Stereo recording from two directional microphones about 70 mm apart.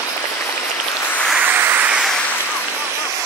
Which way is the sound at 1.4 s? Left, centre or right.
Right.